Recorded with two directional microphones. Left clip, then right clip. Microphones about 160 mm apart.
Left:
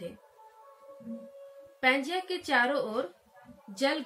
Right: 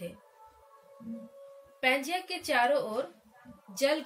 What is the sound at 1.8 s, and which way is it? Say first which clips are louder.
Speech: left 1 dB; 40° left (ahead or behind).